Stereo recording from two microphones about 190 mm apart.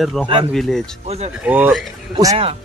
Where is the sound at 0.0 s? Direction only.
Centre (ahead or behind).